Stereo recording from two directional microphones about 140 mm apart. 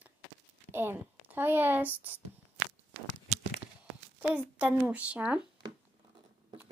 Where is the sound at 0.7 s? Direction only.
15° right (ahead or behind).